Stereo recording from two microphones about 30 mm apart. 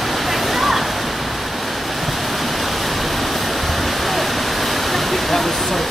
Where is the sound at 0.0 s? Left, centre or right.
Centre.